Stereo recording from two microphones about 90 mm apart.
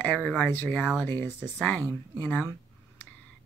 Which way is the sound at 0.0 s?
15° left (ahead or behind).